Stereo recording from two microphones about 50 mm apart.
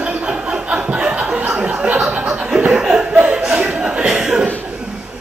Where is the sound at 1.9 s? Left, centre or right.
Centre.